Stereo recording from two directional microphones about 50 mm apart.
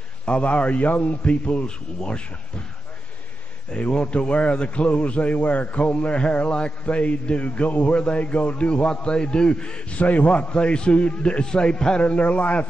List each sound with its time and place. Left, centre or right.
0.2 s a man's voice: left
3.7 s a man's voice: left
9.9 s a man's voice: left